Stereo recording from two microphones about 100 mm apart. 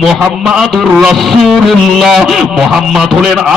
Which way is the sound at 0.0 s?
Centre (ahead or behind).